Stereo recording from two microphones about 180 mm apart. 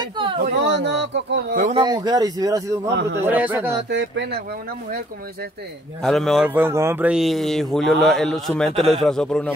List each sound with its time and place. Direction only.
0.4 s speech: 65° right (ahead or behind)
1.7 s speech: 30° right (ahead or behind)
2.0 s speech: 20° right (ahead or behind)
2.9 s speech: 75° right (ahead or behind)
3.3 s a man's voice: 10° right (ahead or behind)
3.9 s speech: 85° right
6.0 s a man's voice: centre (ahead or behind)